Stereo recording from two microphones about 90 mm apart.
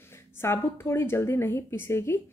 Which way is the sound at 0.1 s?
30° left (ahead or behind).